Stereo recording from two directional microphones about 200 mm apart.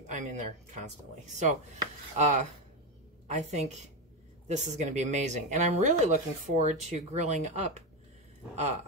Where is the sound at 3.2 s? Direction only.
35° right (ahead or behind).